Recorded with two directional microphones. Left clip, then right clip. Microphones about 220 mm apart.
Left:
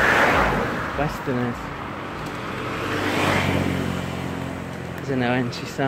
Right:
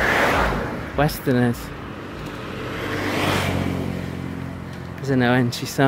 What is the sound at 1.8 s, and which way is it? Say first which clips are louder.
Vehicle: left 3 dB; 5° right (ahead or behind).